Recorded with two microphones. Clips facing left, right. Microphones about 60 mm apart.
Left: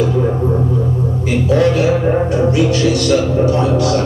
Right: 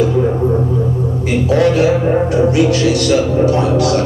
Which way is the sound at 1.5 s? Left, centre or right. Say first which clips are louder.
Right 1 dB; right.